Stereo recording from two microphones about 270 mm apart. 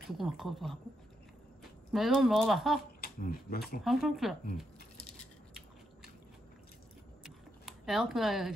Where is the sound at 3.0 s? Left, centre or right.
Left.